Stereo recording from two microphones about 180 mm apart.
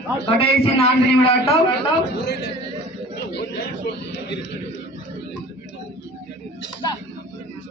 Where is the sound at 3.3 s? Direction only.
70° left (ahead or behind).